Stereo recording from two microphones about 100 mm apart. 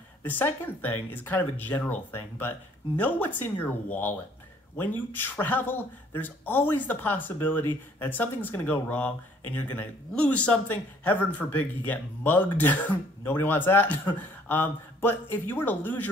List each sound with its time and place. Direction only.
0.2 s speech: 20° left (ahead or behind)